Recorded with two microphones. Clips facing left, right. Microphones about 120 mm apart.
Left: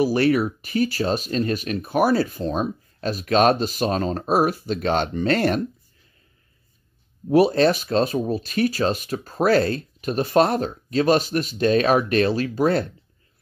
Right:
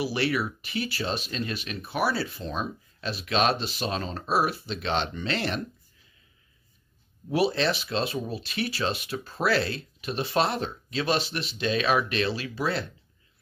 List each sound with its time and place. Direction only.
0.0 s speech: 45° left (ahead or behind)
7.2 s speech: 45° left (ahead or behind)